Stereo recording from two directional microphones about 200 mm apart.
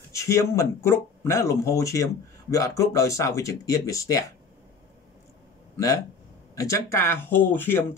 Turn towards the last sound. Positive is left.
turn(degrees=10)  # may be behind; listen again after turning